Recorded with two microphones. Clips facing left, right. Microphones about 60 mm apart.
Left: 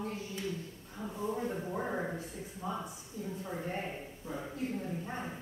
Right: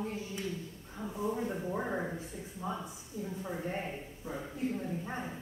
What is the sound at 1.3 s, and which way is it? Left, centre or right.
Speech, centre.